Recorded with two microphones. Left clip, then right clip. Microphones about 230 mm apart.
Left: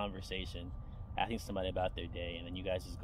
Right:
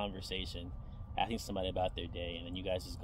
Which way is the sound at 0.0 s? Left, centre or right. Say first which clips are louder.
Right 1 dB; right.